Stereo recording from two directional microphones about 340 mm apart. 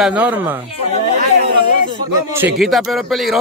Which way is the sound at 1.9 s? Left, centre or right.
Centre.